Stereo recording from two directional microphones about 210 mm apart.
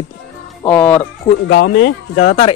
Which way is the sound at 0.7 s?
5° left (ahead or behind).